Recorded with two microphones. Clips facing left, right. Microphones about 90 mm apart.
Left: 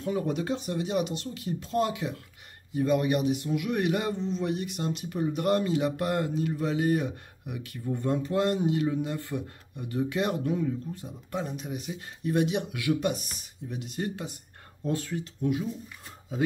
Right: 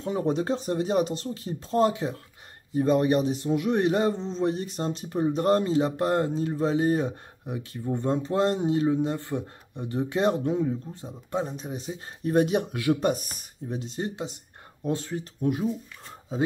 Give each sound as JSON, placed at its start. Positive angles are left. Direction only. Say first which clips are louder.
{"t": 0.0, "sound": "a man's voice", "louder": "right 3 dB", "side_deg": -30}
{"t": 15.4, "sound": "a man's voice", "louder": "right 3 dB", "side_deg": -40}
{"t": 16.3, "sound": "speech", "louder": "right 1 dB", "side_deg": -30}